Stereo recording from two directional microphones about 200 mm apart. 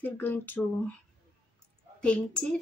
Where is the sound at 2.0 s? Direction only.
5° left (ahead or behind).